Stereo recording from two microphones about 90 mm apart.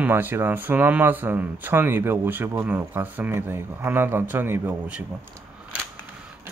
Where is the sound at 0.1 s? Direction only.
25° right (ahead or behind).